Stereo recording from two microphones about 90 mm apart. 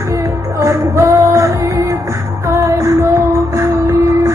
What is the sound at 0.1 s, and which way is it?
Music, 35° right (ahead or behind).